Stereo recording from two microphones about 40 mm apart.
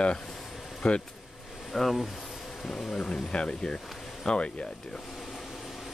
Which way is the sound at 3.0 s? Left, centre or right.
Left.